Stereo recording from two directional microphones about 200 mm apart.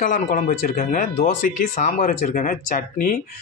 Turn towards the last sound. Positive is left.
turn(degrees=45)  # may be behind; listen again after turning